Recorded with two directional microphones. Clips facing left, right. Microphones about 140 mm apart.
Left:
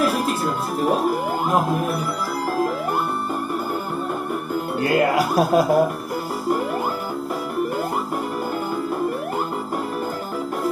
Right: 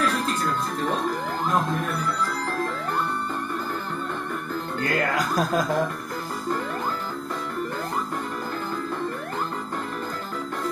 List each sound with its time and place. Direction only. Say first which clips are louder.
0.0 s music: left 4 dB; 10° left (ahead or behind)
4.7 s speech: left 7 dB; 10° left (ahead or behind)